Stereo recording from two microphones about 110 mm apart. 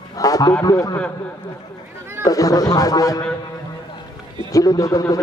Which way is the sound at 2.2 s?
35° left (ahead or behind).